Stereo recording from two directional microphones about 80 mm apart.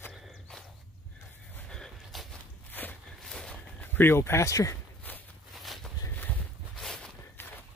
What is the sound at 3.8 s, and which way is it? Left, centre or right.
Speech, left.